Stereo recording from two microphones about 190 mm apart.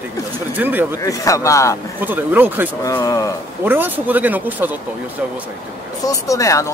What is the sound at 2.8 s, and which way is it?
Speech, 20° left (ahead or behind).